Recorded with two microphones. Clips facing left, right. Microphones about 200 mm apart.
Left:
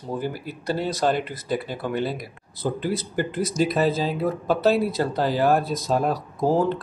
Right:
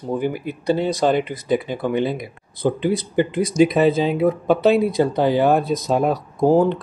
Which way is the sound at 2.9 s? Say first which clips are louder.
Right 6 dB; 5° left (ahead or behind).